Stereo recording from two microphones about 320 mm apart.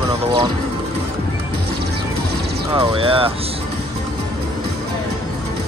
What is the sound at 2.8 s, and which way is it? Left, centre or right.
Speech, centre.